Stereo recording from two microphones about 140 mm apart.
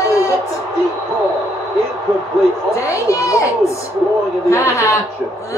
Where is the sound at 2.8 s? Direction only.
20° left (ahead or behind).